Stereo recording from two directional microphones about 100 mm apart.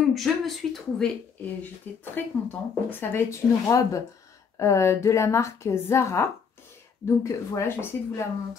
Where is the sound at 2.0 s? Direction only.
20° left (ahead or behind).